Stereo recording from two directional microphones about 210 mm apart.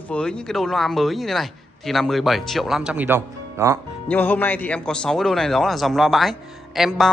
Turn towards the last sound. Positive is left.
turn(degrees=0)  # may be behind; listen again after turning